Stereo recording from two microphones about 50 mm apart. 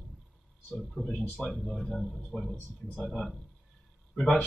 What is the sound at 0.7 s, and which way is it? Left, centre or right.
Speech, centre.